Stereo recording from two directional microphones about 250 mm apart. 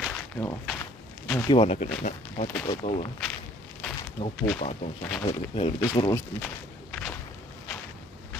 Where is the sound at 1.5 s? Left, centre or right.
Left.